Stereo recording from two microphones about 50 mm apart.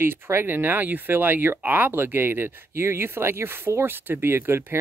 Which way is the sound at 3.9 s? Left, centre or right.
Right.